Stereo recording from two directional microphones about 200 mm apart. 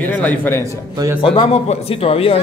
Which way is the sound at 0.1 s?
10° left (ahead or behind).